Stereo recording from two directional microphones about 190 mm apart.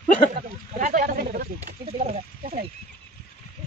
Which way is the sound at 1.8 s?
35° right (ahead or behind).